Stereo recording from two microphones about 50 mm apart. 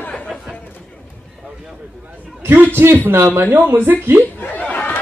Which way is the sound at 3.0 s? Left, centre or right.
Right.